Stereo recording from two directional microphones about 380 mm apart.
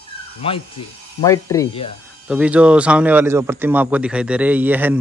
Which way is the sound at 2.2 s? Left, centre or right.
Centre.